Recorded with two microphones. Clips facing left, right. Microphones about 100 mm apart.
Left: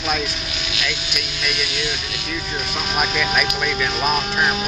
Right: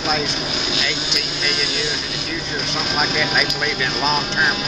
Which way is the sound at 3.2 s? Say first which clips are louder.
Even; 5° right (ahead or behind).